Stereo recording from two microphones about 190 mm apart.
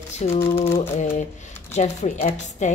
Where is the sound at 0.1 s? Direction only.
35° left (ahead or behind).